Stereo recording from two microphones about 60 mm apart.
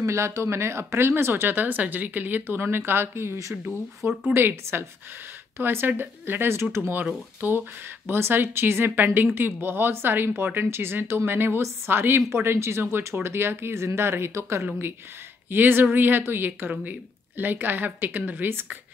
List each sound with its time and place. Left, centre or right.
0.0 s speech: right
4.3 s speech: right
7.3 s speech: right
15.5 s speech: right